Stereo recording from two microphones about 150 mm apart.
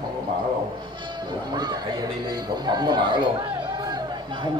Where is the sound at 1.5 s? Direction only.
30° right (ahead or behind).